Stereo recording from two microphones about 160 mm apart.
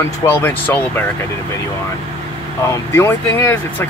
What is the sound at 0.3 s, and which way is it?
Speech, 10° left (ahead or behind).